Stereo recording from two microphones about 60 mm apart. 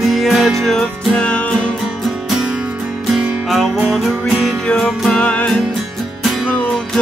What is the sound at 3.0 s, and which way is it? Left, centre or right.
Music, centre.